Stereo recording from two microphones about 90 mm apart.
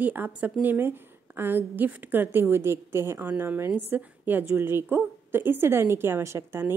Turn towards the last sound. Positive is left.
turn(degrees=-30)  # may be behind; listen again after turning